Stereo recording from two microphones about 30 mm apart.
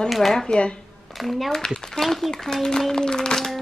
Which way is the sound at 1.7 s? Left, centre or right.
Centre.